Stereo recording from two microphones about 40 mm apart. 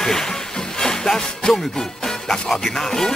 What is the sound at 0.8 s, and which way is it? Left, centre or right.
Music, centre.